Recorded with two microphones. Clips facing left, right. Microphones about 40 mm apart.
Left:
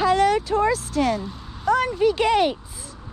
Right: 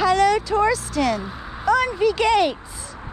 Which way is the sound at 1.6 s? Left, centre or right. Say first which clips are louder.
Right 2 dB; right.